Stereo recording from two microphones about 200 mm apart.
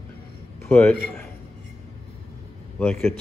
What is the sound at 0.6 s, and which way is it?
Speech, 10° left (ahead or behind).